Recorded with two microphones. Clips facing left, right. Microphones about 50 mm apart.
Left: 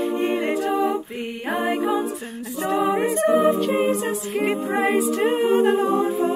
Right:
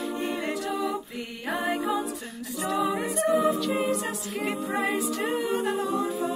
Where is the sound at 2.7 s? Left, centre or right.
Left.